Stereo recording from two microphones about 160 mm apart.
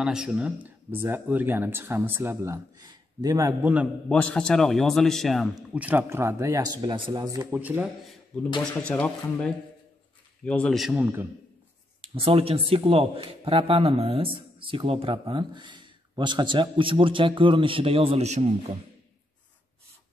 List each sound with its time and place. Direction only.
0.0 s a man's voice: 5° right (ahead or behind); by 3.7 s 20° right (ahead or behind)
4.1 s a man's voice: 5° left (ahead or behind); by 7.9 s 10° right (ahead or behind)
8.5 s a man's voice: 5° left (ahead or behind)
12.0 s a man's voice: 35° right (ahead or behind)